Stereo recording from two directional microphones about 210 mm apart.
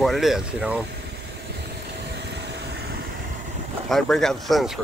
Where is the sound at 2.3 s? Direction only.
55° right (ahead or behind).